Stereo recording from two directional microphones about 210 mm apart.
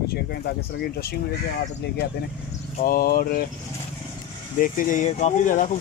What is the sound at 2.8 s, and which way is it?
Speech, 45° left (ahead or behind).